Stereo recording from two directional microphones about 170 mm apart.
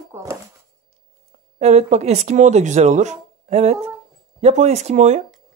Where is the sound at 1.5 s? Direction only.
40° right (ahead or behind).